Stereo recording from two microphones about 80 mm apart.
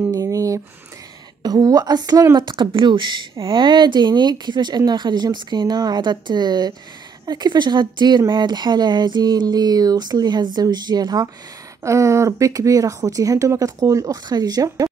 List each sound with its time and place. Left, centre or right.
0.1 s a sound: right
1.4 s speech: right
2.3 s speech: right
3.4 s speech: right
11.8 s speech: right